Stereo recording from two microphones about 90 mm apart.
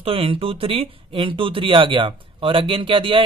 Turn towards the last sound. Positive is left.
turn(degrees=-70)  # may be behind; listen again after turning